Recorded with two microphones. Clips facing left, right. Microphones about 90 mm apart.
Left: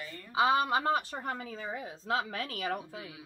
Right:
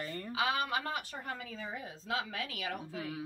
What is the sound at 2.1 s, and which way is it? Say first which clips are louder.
Speech: left 4 dB; 40° left (ahead or behind).